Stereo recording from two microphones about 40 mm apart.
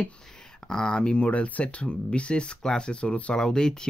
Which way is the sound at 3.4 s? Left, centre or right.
Centre.